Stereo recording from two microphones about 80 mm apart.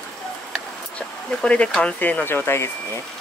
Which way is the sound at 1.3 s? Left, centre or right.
Centre.